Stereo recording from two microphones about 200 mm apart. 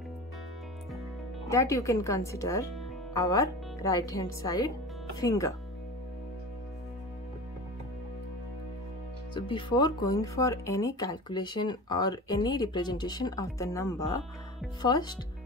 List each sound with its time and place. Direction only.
1.5 s speech: 15° left (ahead or behind)
9.3 s speech: 25° left (ahead or behind)